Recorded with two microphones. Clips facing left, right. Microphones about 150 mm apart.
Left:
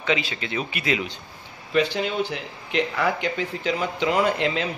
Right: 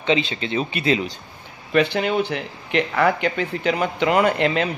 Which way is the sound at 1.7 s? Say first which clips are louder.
Right 4 dB; 60° right (ahead or behind).